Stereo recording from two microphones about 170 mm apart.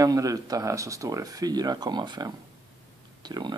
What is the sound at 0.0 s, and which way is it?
Speech, 20° right (ahead or behind).